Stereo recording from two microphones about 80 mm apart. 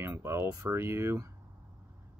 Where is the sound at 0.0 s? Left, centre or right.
Right.